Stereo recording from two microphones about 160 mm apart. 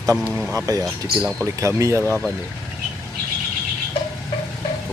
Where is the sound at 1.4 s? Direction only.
20° right (ahead or behind).